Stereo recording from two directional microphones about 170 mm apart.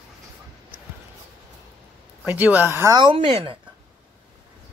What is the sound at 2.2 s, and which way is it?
Speech, 5° right (ahead or behind).